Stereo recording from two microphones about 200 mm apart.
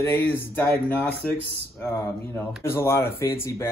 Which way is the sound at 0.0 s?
10° left (ahead or behind).